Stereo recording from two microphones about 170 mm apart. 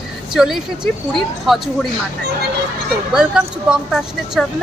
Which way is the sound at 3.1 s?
5° right (ahead or behind).